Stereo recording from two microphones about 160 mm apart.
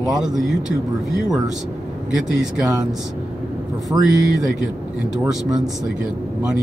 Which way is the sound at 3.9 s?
15° right (ahead or behind).